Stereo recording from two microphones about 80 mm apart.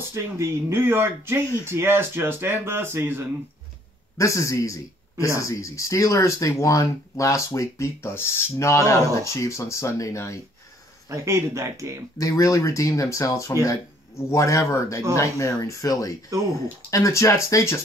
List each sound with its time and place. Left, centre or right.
0.1 s speech: right
4.2 s speech: left
11.1 s speech: right
12.2 s speech: left